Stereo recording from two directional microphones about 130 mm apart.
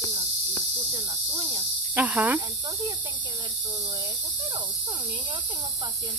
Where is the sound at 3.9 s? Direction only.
25° right (ahead or behind).